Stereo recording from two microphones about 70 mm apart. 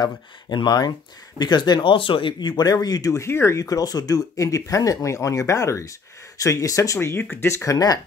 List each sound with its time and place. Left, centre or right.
0.0 s speech: left
3.1 s speech: left
3.6 s speech: left
7.0 s speech: left
7.4 s speech: left